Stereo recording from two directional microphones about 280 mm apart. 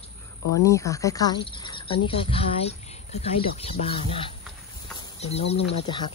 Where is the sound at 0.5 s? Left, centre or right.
Centre.